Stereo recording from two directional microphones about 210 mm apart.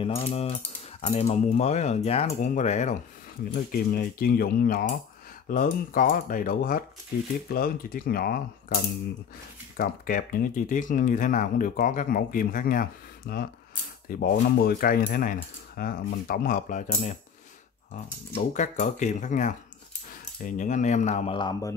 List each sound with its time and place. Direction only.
0.0 s speech: 30° left (ahead or behind)
3.5 s speech: 45° left (ahead or behind)
9.8 s speech: 45° left (ahead or behind)
18.5 s speech: 35° left (ahead or behind); by 21.7 s 15° left (ahead or behind)